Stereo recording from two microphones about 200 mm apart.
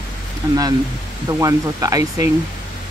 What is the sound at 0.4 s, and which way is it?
Speech, 20° right (ahead or behind).